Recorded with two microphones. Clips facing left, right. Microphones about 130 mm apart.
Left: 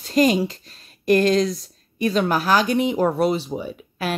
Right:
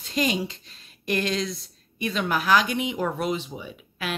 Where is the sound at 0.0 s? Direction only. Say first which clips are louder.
Left 8 dB; 45° left (ahead or behind).